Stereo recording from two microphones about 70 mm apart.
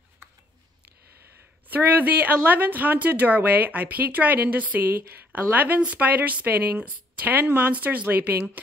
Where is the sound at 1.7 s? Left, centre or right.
Right.